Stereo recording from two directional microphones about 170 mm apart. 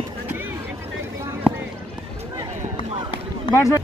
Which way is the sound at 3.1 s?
25° left (ahead or behind).